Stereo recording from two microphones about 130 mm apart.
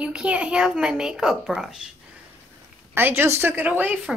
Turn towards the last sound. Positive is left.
turn(degrees=-10)  # may be behind; listen again after turning